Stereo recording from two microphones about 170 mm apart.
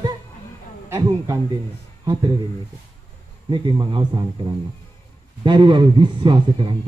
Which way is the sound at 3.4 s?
30° right (ahead or behind).